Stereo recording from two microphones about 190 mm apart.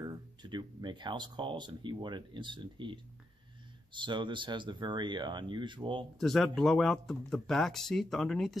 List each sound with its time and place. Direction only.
0.0 s speech: 20° right (ahead or behind)
6.1 s speech: centre (ahead or behind)